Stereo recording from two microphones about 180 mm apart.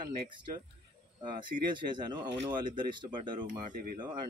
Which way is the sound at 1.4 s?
25° right (ahead or behind).